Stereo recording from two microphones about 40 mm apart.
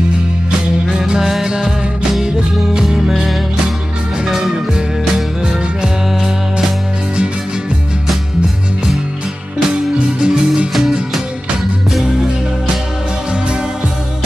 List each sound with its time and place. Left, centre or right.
0.8 s music: centre
4.3 s music: centre
10.2 s music: right